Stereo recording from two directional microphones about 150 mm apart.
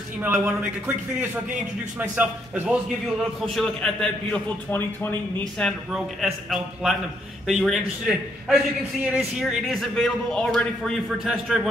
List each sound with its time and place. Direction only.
0.2 s a man's voice: 10° right (ahead or behind)
3.3 s a man's voice: centre (ahead or behind)